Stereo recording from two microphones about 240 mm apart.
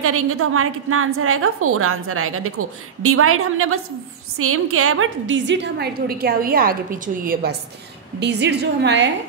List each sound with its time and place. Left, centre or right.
0.0 s a woman's voice: right